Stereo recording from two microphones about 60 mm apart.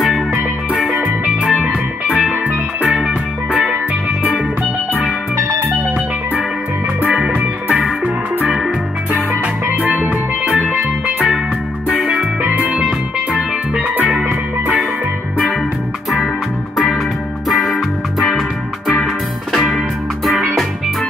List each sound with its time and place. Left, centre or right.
1.4 s music: centre
7.1 s music: centre
9.8 s music: right
11.9 s music: right
13.9 s music: centre
19.5 s music: centre